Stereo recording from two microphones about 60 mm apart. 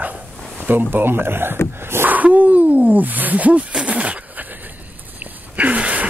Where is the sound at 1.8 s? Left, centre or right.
Right.